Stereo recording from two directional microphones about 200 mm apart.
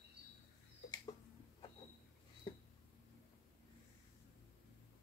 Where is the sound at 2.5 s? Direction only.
25° left (ahead or behind).